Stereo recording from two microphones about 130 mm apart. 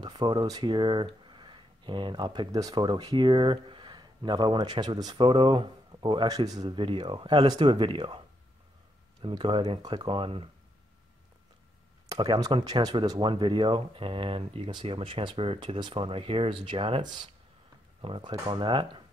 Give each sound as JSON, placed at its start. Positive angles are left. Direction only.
{"t": 0.0, "sound": "speech", "side_deg": -35}
{"t": 9.2, "sound": "speech", "side_deg": -40}
{"t": 12.1, "sound": "speech", "side_deg": -30}